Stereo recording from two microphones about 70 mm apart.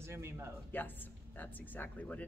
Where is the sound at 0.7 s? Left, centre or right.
Left.